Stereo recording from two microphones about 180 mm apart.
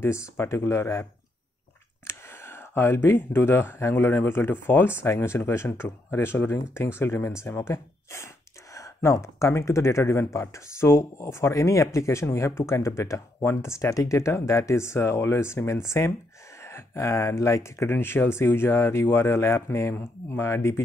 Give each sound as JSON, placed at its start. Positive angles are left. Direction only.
{"t": 0.0, "sound": "speech", "side_deg": 15}
{"t": 2.0, "sound": "speech", "side_deg": 15}